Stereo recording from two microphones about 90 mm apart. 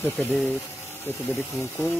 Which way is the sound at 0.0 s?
25° left (ahead or behind).